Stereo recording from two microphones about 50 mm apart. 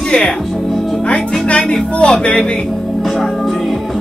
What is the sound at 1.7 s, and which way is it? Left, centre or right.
Speech, centre.